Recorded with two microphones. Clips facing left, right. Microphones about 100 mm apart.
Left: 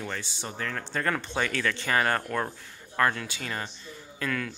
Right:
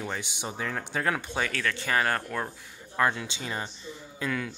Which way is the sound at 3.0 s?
15° right (ahead or behind).